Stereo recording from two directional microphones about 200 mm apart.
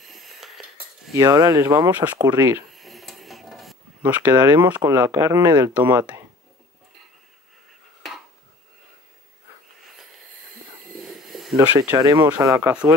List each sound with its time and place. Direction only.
0.0 s cutlery: centre (ahead or behind)
1.1 s speech: 15° right (ahead or behind)
2.7 s a sound: centre (ahead or behind)
4.6 s speech: 10° right (ahead or behind)
11.1 s snake: centre (ahead or behind)
11.5 s speech: 10° right (ahead or behind)
12.0 s speech: 20° right (ahead or behind)